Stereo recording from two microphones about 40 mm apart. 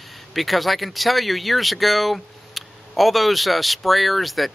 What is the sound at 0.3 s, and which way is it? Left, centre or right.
Speech, centre.